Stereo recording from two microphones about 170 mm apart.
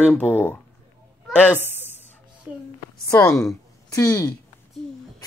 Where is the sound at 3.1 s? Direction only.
15° left (ahead or behind).